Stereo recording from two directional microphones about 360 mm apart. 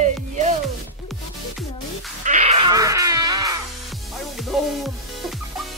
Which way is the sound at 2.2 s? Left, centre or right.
Centre.